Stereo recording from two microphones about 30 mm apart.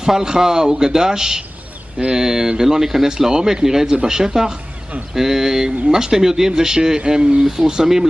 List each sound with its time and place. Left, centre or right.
0.0 s speech: right
7.1 s speech: right
7.4 s speech: centre